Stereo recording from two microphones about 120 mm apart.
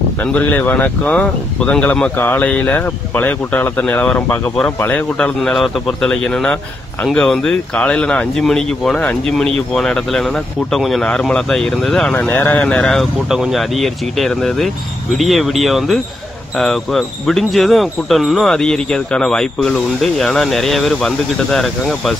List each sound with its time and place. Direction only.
0.3 s speech: 15° left (ahead or behind)
12.3 s speech: 15° left (ahead or behind)